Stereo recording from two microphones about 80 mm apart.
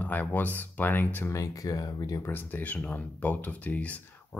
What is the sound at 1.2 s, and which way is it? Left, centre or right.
Speech, left.